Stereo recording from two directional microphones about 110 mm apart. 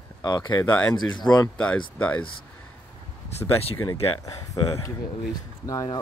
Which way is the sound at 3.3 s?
70° left (ahead or behind).